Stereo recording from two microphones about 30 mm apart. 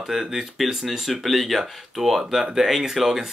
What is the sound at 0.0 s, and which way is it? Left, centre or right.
Speech, centre.